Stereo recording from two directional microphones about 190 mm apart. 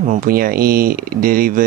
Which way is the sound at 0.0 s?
45° right (ahead or behind).